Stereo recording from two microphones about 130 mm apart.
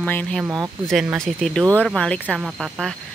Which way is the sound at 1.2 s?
5° left (ahead or behind).